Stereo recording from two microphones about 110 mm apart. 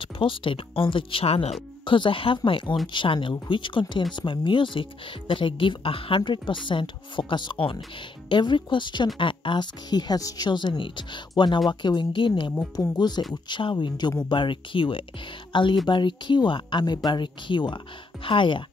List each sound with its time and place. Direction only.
0.0 s speech: 50° left (ahead or behind); by 1.6 s 70° left (ahead or behind)
1.9 s speech: 50° left (ahead or behind)